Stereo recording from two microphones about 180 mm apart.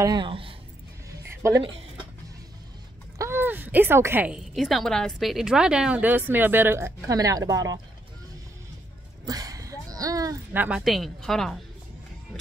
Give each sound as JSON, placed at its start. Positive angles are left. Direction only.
{"t": 0.0, "sound": "speech", "side_deg": -25}
{"t": 1.3, "sound": "a sound", "side_deg": -15}
{"t": 3.2, "sound": "a woman's voice", "side_deg": -15}
{"t": 9.2, "sound": "speech", "side_deg": -20}